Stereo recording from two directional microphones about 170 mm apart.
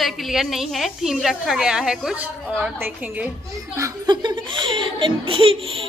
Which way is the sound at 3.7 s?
20° right (ahead or behind).